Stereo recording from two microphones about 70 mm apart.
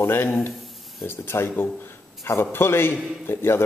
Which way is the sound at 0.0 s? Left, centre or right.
Left.